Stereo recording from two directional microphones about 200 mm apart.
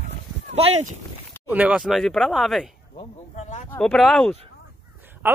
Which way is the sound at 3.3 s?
35° left (ahead or behind).